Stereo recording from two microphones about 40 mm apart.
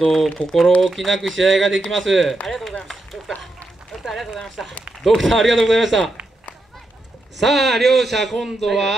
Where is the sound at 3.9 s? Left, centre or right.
Centre.